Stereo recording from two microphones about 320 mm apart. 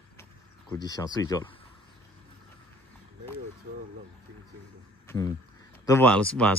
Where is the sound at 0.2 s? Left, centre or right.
Centre.